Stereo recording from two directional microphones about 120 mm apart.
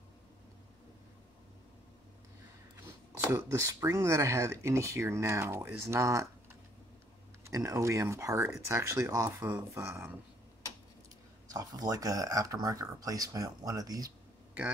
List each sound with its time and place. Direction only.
3.3 s speech: 30° right (ahead or behind)
7.4 s speech: 25° right (ahead or behind)
11.5 s speech: 30° right (ahead or behind)